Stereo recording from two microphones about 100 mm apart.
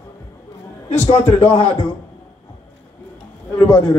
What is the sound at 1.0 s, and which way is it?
Speech, 70° left (ahead or behind).